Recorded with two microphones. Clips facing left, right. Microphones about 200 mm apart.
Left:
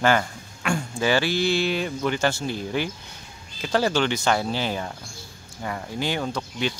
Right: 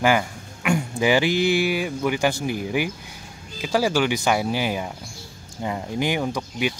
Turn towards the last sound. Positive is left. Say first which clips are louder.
# right 2 dB
turn(degrees=-15)  # may be behind; listen again after turning